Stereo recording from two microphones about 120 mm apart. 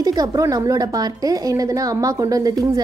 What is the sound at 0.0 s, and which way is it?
A woman's voice, 30° right (ahead or behind).